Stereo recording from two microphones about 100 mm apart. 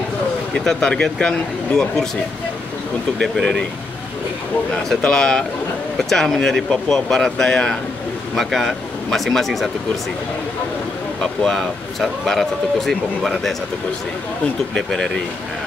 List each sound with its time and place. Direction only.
0.7 s speech: 5° left (ahead or behind)
3.2 s speech: centre (ahead or behind)
4.8 s speech: 5° left (ahead or behind)
11.4 s speech: 5° left (ahead or behind)
14.7 s speech: 5° left (ahead or behind)